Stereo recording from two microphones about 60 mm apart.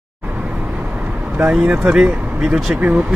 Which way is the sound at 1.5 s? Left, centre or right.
Centre.